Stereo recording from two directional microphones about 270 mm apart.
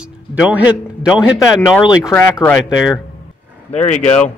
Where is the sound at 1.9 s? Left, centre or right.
Centre.